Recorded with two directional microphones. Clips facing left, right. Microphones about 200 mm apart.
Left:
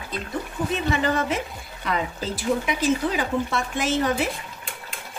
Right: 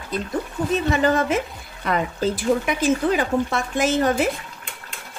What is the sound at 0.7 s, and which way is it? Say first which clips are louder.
Speech: right 5 dB; 45° right (ahead or behind).